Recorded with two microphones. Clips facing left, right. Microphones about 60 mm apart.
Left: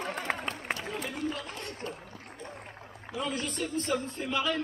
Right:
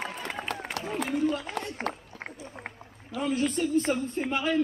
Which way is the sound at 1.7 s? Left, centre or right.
Right.